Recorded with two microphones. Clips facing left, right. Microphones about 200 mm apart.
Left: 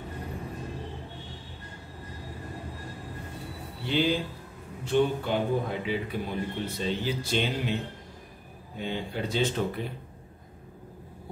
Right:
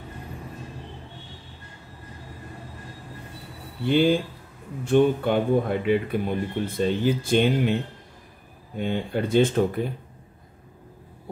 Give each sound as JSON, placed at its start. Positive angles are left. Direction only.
{"t": 3.8, "sound": "speech", "side_deg": -50}
{"t": 8.7, "sound": "speech", "side_deg": -55}